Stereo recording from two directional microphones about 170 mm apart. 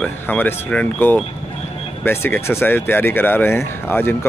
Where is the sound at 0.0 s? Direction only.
10° left (ahead or behind).